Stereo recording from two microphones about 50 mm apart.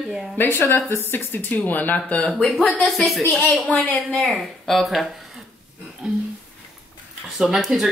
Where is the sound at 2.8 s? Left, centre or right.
Centre.